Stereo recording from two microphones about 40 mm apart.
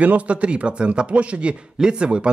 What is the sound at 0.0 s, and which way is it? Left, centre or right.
A man's voice, right.